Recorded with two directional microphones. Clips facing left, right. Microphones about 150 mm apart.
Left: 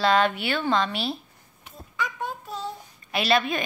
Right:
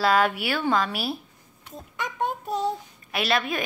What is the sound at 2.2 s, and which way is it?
Child singing, 15° right (ahead or behind).